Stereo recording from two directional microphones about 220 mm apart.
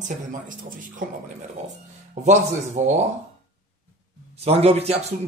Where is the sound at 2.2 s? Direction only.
30° right (ahead or behind).